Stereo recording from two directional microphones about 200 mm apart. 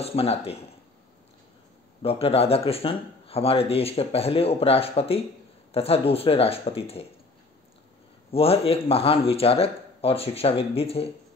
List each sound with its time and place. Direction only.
0.0 s speech: 30° left (ahead or behind)
2.0 s speech: 30° left (ahead or behind)
8.3 s speech: 30° left (ahead or behind)